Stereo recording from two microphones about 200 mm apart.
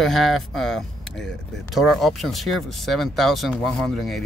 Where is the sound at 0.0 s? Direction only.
Centre (ahead or behind).